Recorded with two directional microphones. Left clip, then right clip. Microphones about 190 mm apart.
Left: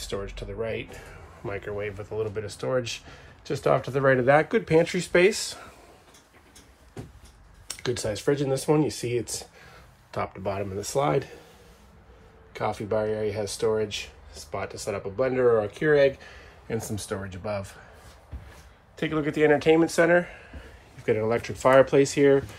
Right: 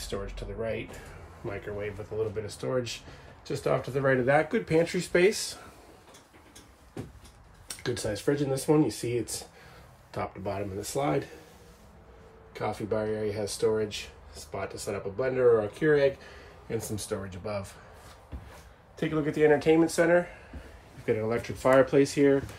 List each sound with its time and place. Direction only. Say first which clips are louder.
0.0 s speech: left 3 dB; 5° right (ahead or behind)
7.6 s speech: left 3 dB; 5° right (ahead or behind)
12.5 s speech: left 4 dB; centre (ahead or behind)
18.9 s speech: left 2 dB; 10° right (ahead or behind)